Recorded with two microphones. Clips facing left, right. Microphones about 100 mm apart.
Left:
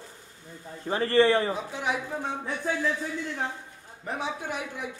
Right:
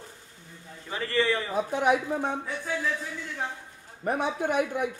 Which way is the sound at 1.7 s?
50° right (ahead or behind).